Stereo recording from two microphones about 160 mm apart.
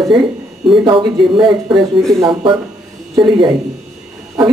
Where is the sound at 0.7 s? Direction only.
30° right (ahead or behind).